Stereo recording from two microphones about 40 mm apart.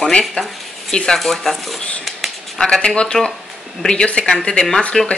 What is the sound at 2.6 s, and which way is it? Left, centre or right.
Speech, centre.